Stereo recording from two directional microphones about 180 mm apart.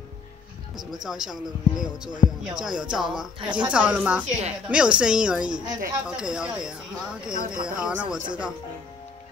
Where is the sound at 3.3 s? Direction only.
25° right (ahead or behind).